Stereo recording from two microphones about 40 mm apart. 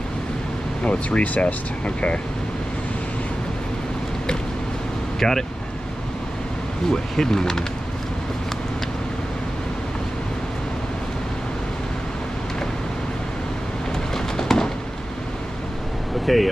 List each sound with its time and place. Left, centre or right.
0.8 s speech: left
5.2 s speech: centre
6.9 s speech: centre
14.1 s a sound: centre
16.3 s speech: centre